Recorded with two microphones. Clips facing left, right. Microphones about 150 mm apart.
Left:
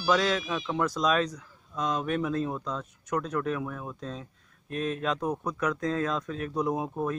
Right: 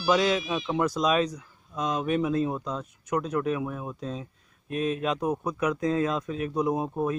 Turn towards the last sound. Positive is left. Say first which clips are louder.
# right 3 dB
turn(degrees=-10)  # may be behind; listen again after turning